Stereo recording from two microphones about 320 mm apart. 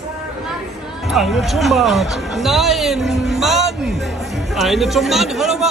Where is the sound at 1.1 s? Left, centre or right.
Centre.